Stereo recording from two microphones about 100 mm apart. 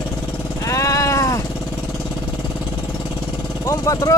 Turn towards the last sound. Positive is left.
turn(degrees=35)  # may be behind; listen again after turning